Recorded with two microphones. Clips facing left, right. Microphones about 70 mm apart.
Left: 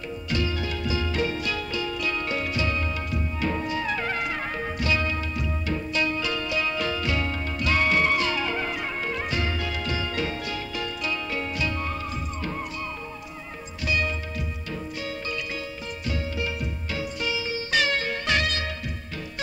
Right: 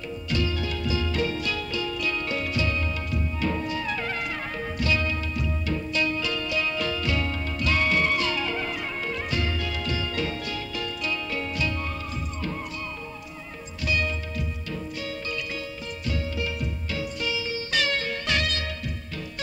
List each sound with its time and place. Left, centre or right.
0.3 s music: centre
13.8 s music: centre